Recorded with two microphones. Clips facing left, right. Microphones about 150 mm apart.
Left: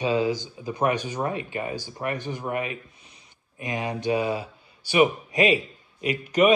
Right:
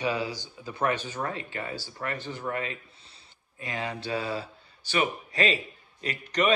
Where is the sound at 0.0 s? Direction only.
20° left (ahead or behind).